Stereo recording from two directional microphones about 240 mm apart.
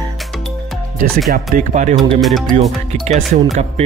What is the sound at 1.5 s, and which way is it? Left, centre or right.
Speech, right.